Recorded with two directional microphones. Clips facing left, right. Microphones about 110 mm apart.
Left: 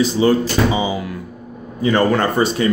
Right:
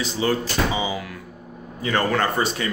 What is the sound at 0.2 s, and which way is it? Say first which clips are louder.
Speech: left 5 dB; 25° left (ahead or behind).